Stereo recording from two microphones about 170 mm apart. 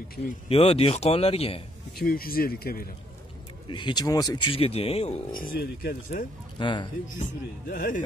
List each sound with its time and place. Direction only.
0.5 s speech: 35° left (ahead or behind)
2.0 s speech: 60° left (ahead or behind)
3.6 s speech: 30° left (ahead or behind)
4.6 s speech: 35° left (ahead or behind)
5.3 s speech: 55° left (ahead or behind)
6.6 s speech: 30° left (ahead or behind)
7.2 s speech: 55° left (ahead or behind)